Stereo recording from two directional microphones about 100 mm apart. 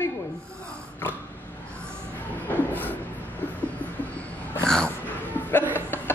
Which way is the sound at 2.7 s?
20° left (ahead or behind).